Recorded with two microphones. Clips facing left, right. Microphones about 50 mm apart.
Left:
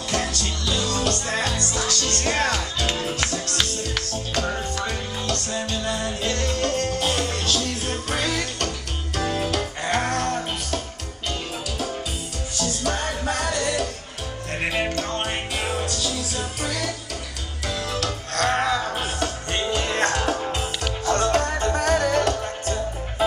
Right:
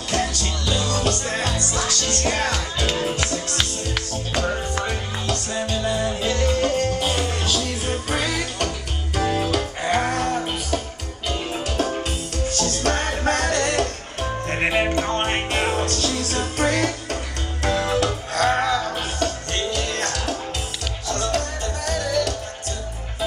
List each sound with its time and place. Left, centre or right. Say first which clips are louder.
0.3 s music: right 1 dB; centre
1.9 s music: right 1 dB; centre
2.1 s music: even; centre
3.0 s music: right 2 dB; centre
4.8 s music: right 1 dB; centre
12.5 s music: right 2 dB; right
14.5 s music: right 3 dB; right
15.8 s music: right 4 dB; right
17.6 s music: right 6 dB; right
18.3 s music: right 1 dB; centre; by 23.2 s left